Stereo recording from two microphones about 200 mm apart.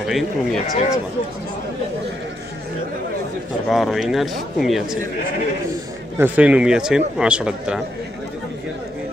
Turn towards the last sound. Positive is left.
turn(degrees=-5)  # may be behind; listen again after turning